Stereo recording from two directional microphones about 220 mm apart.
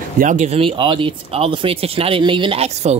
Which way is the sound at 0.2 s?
35° right (ahead or behind).